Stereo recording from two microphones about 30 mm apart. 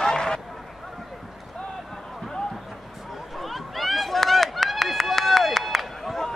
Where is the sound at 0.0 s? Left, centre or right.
Left.